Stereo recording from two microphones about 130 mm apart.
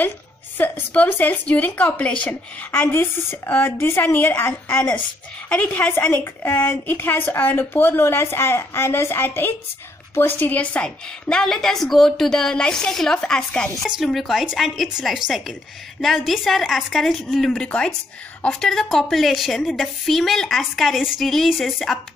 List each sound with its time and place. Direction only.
0.6 s a woman's voice: 15° left (ahead or behind); by 22.0 s centre (ahead or behind)